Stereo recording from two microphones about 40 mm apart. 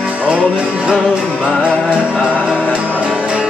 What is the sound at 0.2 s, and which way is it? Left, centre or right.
Music, right.